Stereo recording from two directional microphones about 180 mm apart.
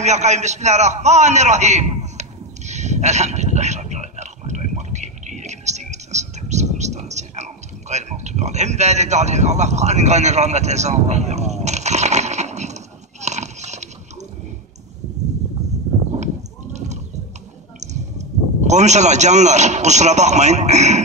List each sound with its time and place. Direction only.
0.0 s a sound: 40° right (ahead or behind)
13.2 s horse: 40° right (ahead or behind)
17.7 s a man's voice: 40° right (ahead or behind)